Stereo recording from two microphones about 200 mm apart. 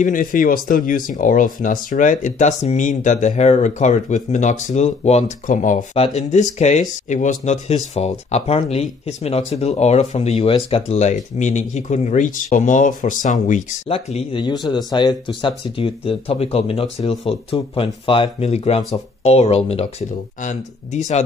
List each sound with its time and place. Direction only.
0.0 s speech: 45° left (ahead or behind)